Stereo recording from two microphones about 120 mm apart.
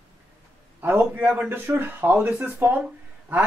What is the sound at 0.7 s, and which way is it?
A woman's voice, 20° right (ahead or behind).